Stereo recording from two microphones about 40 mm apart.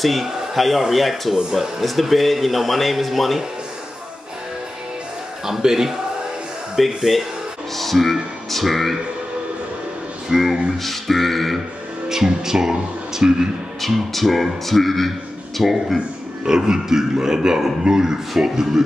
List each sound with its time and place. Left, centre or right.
0.0 s a man's voice: centre
5.4 s a man's voice: centre
6.8 s a man's voice: centre
10.3 s a man's voice: centre
12.1 s a man's voice: centre
13.7 s a man's voice: centre
16.4 s a man's voice: centre